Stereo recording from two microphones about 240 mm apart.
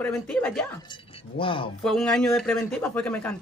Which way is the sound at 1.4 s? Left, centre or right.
Left.